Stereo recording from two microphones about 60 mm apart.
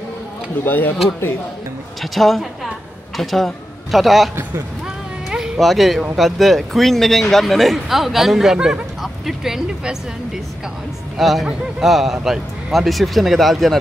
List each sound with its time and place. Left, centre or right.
0.7 s speech: left
2.0 s a woman's voice: centre
5.6 s speech: centre
9.0 s a sound: centre
11.1 s speech: centre